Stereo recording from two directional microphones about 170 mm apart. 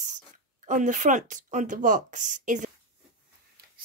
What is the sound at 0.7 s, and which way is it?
Speech, 50° right (ahead or behind).